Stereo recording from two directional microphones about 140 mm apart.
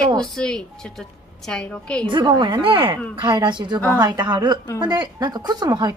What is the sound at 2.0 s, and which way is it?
Speech, 35° right (ahead or behind).